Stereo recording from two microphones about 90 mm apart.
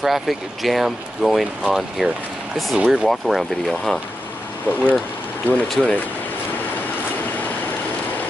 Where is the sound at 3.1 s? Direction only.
Centre (ahead or behind).